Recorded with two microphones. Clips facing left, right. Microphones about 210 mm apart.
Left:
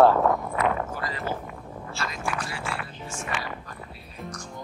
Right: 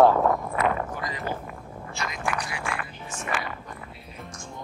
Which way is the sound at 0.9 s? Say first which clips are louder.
Even; 15° right (ahead or behind).